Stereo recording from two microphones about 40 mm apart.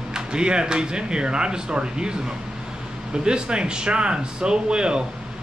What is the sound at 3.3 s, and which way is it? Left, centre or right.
Speech, right.